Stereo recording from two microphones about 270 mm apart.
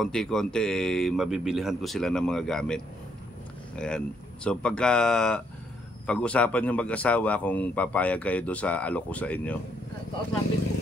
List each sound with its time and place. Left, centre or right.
0.0 s a man's voice: centre